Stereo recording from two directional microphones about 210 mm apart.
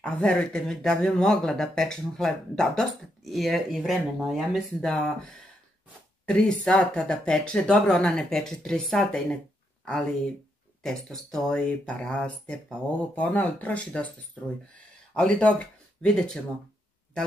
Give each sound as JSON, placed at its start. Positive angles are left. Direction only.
{"t": 0.0, "sound": "speech", "side_deg": 5}
{"t": 10.8, "sound": "speech", "side_deg": 0}
{"t": 15.1, "sound": "speech", "side_deg": 5}